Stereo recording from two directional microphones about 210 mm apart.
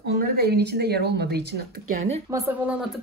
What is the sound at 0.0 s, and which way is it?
Speech, 50° right (ahead or behind).